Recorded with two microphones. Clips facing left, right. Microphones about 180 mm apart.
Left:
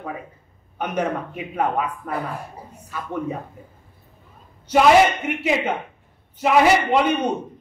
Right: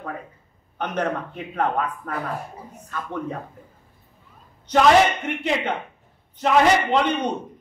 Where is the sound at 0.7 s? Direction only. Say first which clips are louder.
Left 1 dB; 10° left (ahead or behind).